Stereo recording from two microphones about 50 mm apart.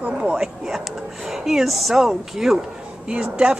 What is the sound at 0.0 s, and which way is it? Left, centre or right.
Speech, centre.